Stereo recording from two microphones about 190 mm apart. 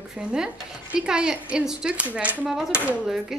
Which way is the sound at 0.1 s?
5° right (ahead or behind).